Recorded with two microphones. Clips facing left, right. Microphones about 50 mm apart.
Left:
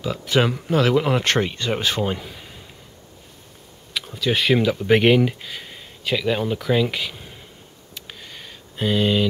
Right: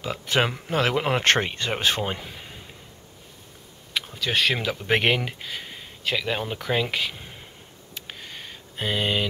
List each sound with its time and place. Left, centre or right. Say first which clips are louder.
0.3 s speech: left 4 dB; centre
4.0 s speech: left 2 dB; centre
7.9 s a sound: even; centre